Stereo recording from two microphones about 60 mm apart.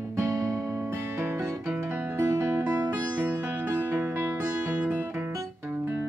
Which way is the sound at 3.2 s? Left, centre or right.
Right.